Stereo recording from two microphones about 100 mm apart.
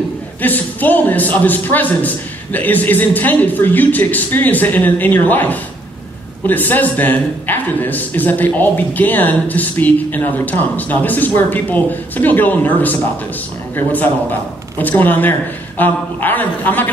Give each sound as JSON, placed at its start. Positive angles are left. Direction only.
{"t": 0.4, "sound": "a man's voice", "side_deg": 15}